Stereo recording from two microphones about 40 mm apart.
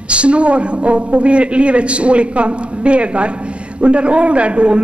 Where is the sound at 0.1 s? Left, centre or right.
Right.